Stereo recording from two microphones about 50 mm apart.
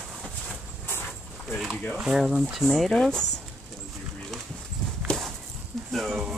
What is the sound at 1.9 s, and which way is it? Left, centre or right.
Speech, centre.